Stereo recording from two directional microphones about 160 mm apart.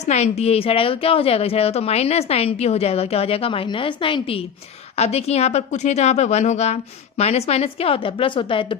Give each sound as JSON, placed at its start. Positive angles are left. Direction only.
{"t": 0.0, "sound": "a woman's voice", "side_deg": 45}